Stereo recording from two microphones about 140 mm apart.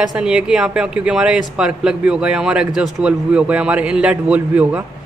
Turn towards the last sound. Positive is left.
turn(degrees=-10)  # may be behind; listen again after turning